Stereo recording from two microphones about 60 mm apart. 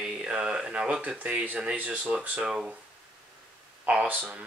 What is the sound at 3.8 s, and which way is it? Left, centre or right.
Speech, right.